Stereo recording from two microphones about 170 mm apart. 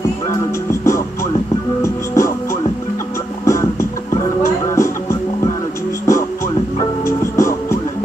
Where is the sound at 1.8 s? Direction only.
20° left (ahead or behind).